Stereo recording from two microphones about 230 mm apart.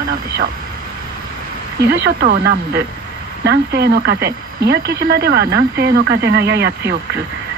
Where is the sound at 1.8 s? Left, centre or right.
Right.